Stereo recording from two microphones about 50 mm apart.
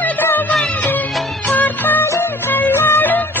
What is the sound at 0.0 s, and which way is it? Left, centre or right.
Music, left.